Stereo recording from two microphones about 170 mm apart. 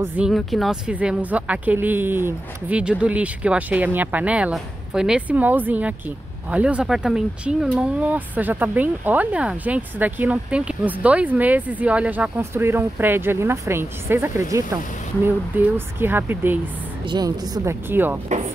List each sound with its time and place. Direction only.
0.0 s speech: 10° right (ahead or behind)
0.3 s speech: centre (ahead or behind)
17.0 s a woman's voice: 25° right (ahead or behind)
17.8 s speech: 10° right (ahead or behind)